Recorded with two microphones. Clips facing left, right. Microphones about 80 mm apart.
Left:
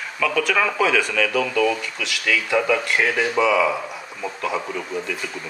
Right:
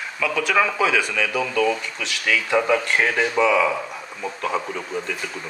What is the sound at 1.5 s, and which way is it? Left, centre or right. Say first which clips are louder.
Speech: left 1 dB; right.